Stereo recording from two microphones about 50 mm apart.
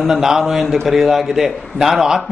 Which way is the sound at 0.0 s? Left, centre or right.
Centre.